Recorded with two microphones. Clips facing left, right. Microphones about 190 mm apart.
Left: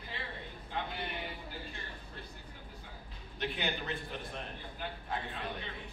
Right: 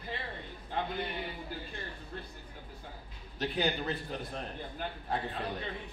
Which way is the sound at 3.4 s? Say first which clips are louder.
Right 5 dB; 35° right (ahead or behind).